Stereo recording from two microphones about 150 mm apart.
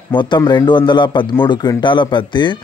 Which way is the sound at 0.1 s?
30° left (ahead or behind).